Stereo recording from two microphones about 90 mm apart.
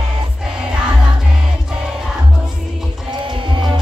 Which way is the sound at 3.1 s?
65° right (ahead or behind).